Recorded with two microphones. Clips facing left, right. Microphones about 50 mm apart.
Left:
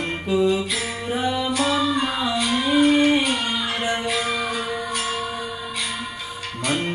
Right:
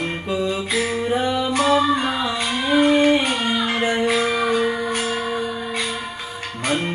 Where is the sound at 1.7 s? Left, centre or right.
Right.